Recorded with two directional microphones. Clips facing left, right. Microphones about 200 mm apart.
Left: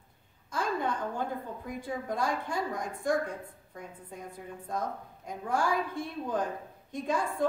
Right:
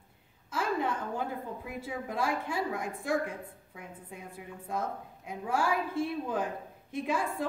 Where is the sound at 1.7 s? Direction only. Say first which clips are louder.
Left 4 dB; 5° right (ahead or behind).